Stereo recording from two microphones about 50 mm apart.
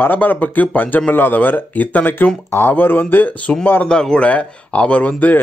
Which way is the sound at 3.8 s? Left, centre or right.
Centre.